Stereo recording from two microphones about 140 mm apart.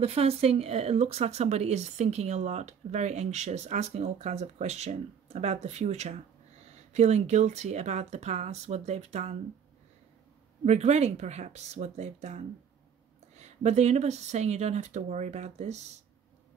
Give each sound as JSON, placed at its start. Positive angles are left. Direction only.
{"t": 0.0, "sound": "speech", "side_deg": -45}
{"t": 10.6, "sound": "speech", "side_deg": -55}